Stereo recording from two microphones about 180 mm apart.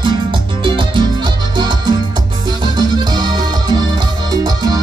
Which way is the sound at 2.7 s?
25° right (ahead or behind).